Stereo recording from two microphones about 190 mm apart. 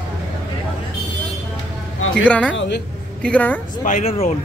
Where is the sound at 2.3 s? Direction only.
5° left (ahead or behind).